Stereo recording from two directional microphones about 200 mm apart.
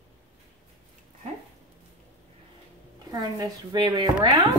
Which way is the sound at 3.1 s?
20° right (ahead or behind).